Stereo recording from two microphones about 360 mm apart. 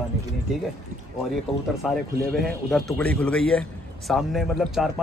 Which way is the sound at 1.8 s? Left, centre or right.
Centre.